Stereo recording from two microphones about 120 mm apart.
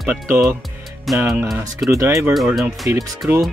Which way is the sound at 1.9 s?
25° right (ahead or behind).